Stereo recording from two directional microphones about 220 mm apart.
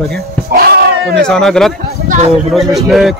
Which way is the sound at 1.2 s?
Centre (ahead or behind).